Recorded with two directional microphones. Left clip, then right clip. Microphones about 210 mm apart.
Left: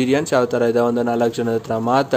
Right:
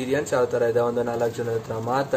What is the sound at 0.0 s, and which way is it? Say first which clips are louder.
A man's voice: left 5 dB; 45° left (ahead or behind).